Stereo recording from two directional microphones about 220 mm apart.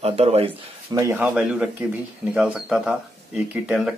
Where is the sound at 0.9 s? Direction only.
5° right (ahead or behind).